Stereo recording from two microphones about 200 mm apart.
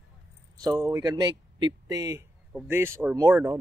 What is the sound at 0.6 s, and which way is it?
Speech, 15° right (ahead or behind).